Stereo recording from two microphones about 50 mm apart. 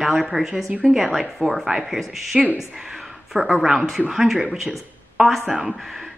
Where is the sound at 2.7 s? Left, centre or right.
Centre.